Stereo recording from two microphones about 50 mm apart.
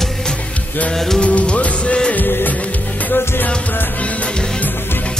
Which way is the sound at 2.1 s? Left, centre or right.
Left.